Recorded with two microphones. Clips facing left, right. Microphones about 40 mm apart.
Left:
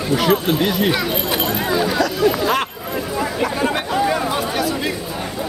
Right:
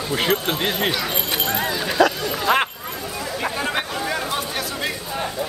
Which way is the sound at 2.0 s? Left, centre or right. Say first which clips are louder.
Right 3 dB; right.